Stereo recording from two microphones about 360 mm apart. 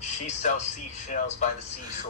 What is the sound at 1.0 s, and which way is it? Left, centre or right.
Speech, centre.